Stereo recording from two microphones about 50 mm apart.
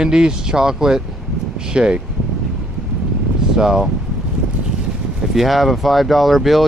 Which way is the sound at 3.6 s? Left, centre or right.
Centre.